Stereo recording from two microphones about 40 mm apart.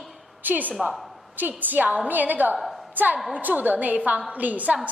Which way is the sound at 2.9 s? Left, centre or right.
Right.